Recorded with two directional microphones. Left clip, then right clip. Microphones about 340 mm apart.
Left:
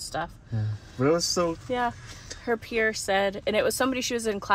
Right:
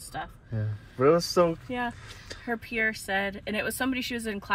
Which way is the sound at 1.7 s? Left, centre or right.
Centre.